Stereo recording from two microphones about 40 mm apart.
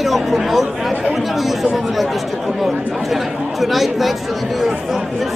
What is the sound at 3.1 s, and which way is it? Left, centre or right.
Speech, centre.